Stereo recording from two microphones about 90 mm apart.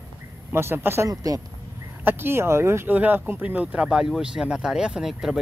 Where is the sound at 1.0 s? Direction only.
40° right (ahead or behind).